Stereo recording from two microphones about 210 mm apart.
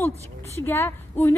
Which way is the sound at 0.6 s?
10° left (ahead or behind).